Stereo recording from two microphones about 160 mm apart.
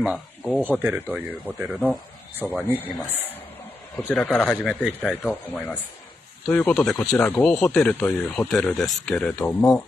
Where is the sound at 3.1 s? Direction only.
10° left (ahead or behind).